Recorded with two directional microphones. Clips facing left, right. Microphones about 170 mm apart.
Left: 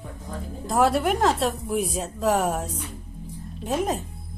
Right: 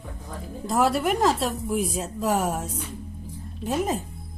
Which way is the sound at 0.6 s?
Centre (ahead or behind).